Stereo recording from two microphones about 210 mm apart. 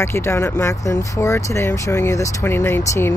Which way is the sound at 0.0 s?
10° left (ahead or behind).